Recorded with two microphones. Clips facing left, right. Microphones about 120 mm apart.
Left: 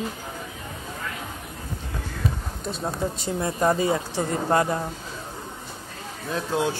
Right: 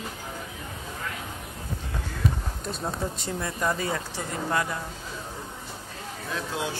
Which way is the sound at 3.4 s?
30° left (ahead or behind).